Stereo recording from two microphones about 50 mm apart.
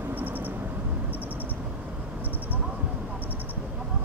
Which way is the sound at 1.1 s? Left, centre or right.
Left.